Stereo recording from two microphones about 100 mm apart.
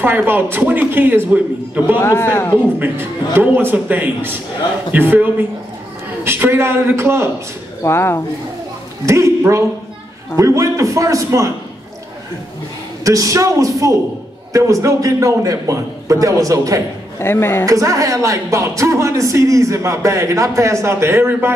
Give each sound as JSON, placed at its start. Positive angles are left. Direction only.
{"t": 0.0, "sound": "a man's voice", "side_deg": -20}
{"t": 2.0, "sound": "speech", "side_deg": 25}
{"t": 2.8, "sound": "a man's voice", "side_deg": -20}
{"t": 7.8, "sound": "speech", "side_deg": 25}
{"t": 9.0, "sound": "speech", "side_deg": -30}
{"t": 10.3, "sound": "speech", "side_deg": -30}
{"t": 13.0, "sound": "speech", "side_deg": -35}
{"t": 17.2, "sound": "speech", "side_deg": 25}
{"t": 17.6, "sound": "speech", "side_deg": -35}